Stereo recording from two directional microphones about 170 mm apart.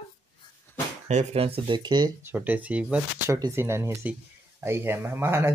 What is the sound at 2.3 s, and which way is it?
Speech, 10° right (ahead or behind).